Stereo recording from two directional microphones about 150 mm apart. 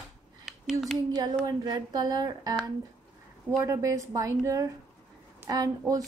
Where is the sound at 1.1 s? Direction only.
25° right (ahead or behind).